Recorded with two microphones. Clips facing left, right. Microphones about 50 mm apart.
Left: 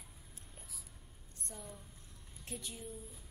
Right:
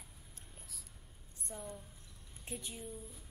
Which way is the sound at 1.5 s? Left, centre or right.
Right.